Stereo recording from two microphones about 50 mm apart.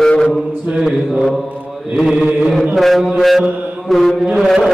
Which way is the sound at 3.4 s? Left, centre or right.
Right.